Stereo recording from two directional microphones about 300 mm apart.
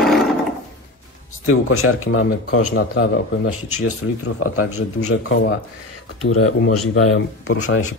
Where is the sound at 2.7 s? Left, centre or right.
Left.